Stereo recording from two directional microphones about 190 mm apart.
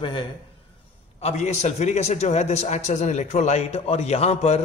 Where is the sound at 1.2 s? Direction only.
35° left (ahead or behind).